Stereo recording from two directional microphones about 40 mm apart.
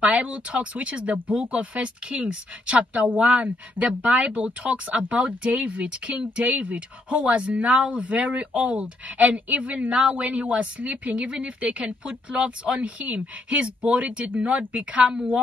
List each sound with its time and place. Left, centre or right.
0.0 s a woman's voice: right
10.8 s a woman's voice: right
11.1 s speech: right